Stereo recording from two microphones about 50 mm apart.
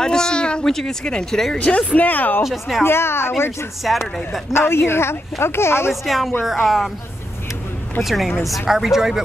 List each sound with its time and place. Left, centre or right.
0.0 s a sound: centre
0.7 s speech: centre
1.6 s speech: left
2.0 s speech: left
2.4 s speech: centre
2.8 s speech: left
3.8 s speech: centre
4.5 s speech: left
6.0 s speech: centre
8.0 s speech: centre